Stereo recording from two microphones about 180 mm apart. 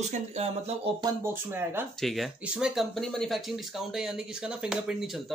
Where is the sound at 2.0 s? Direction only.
Centre (ahead or behind).